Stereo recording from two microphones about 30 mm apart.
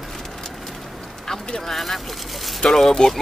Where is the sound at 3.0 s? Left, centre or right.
Left.